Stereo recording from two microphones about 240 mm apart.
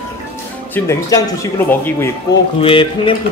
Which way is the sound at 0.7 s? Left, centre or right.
Centre.